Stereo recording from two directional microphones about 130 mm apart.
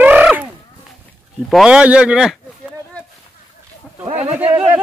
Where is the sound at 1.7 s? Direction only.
10° right (ahead or behind).